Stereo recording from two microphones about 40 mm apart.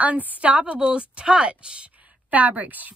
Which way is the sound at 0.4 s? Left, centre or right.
Right.